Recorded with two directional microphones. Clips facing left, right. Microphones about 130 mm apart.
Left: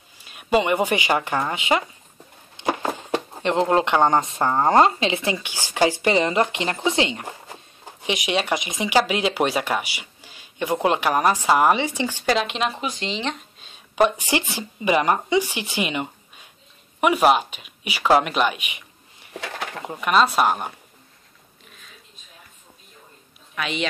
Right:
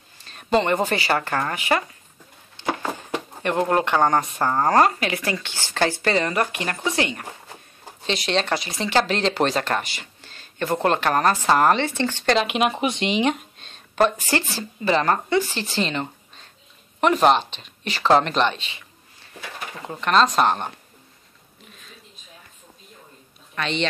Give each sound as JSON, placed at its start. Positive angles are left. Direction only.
{"t": 0.2, "sound": "speech", "side_deg": 10}
{"t": 2.5, "sound": "a sound", "side_deg": 20}
{"t": 3.1, "sound": "speech", "side_deg": 20}
{"t": 12.4, "sound": "speech", "side_deg": -10}
{"t": 13.6, "sound": "speech", "side_deg": 5}
{"t": 23.5, "sound": "speech", "side_deg": 5}